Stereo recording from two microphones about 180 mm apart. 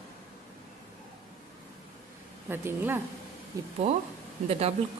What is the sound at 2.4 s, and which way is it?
Speech, 10° right (ahead or behind).